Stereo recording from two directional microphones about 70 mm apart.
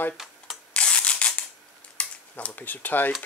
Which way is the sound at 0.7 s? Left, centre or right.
Centre.